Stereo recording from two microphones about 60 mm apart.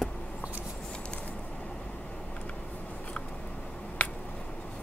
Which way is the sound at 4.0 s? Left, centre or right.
Left.